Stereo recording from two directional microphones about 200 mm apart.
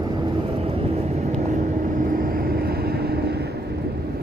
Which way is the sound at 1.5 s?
40° right (ahead or behind).